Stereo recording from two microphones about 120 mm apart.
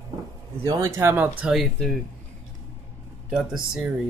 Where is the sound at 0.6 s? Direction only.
25° right (ahead or behind); by 1.9 s centre (ahead or behind).